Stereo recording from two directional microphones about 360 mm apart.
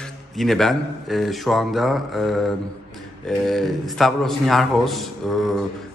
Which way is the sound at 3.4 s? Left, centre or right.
Centre.